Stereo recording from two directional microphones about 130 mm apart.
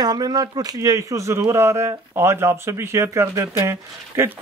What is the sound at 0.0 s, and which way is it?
Speech, 30° right (ahead or behind).